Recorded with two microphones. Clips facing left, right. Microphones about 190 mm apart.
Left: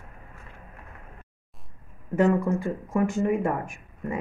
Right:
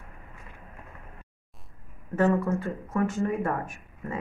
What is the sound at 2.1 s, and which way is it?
Speech, 15° left (ahead or behind).